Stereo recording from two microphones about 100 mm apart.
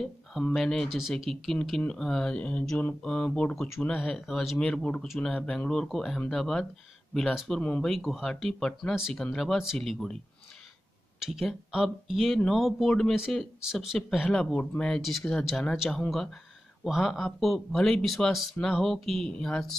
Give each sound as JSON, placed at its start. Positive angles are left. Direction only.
{"t": 0.0, "sound": "a sound", "side_deg": 0}
{"t": 0.6, "sound": "speech", "side_deg": 5}
{"t": 11.1, "sound": "speech", "side_deg": -5}